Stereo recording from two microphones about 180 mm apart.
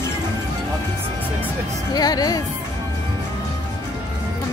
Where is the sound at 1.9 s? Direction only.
20° left (ahead or behind).